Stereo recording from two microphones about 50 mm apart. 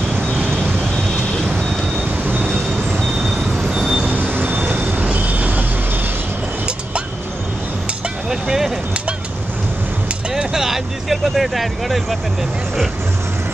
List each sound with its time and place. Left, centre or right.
2.2 s train: right
3.6 s vehicle: centre
4.1 s train: right
5.1 s vehicle: right
8.3 s a sound: centre
10.3 s vehicle: centre